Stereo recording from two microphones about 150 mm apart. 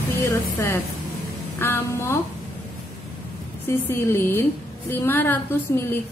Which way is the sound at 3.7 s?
15° left (ahead or behind).